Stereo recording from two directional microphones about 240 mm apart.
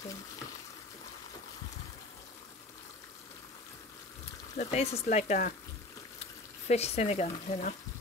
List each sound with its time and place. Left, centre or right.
4.6 s speech: left
6.7 s speech: left